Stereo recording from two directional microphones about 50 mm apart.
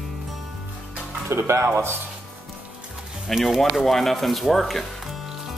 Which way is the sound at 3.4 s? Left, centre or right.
Centre.